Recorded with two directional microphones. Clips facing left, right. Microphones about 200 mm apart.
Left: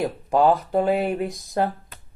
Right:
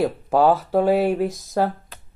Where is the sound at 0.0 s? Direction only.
Centre (ahead or behind).